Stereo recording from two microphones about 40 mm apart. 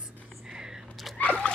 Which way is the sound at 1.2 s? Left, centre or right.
Left.